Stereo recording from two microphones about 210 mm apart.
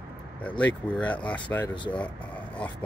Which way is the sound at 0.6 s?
5° left (ahead or behind).